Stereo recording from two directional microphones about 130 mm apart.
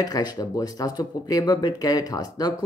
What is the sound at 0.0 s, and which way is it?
Speech, 30° left (ahead or behind).